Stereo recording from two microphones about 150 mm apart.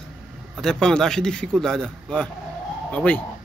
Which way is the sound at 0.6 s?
5° left (ahead or behind).